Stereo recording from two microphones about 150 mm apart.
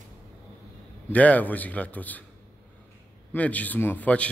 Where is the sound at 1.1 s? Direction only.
10° left (ahead or behind).